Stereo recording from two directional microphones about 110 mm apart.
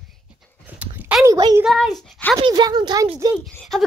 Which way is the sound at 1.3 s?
35° right (ahead or behind).